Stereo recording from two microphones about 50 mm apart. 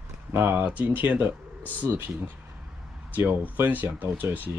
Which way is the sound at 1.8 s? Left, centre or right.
Right.